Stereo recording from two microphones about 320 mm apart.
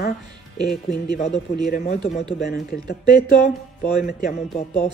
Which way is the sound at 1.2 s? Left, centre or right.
Left.